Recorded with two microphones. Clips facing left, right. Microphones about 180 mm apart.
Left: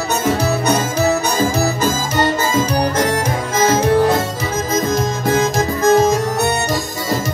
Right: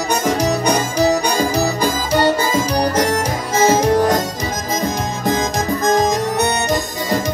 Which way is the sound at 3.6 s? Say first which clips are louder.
Right 2 dB; 10° right (ahead or behind).